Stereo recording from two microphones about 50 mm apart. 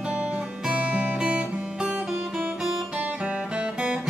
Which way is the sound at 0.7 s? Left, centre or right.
Right.